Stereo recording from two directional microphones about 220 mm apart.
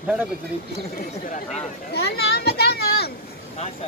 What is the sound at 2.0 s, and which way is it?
Children playing, 45° left (ahead or behind).